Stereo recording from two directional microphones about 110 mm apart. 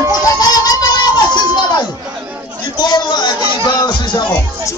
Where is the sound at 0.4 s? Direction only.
35° left (ahead or behind).